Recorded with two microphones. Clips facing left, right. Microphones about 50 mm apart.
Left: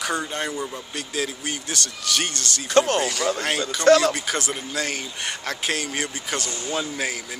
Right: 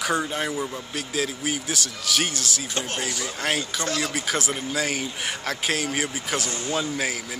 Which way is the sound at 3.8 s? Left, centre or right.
Left.